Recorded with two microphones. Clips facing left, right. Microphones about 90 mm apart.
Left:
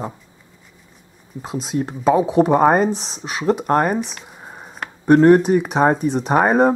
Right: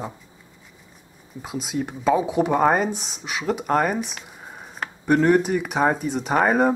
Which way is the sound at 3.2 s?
35° left (ahead or behind).